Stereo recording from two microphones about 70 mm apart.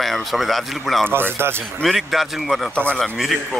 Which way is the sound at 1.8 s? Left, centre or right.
Centre.